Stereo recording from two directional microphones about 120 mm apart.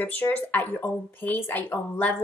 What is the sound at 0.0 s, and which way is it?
Speech, 15° left (ahead or behind).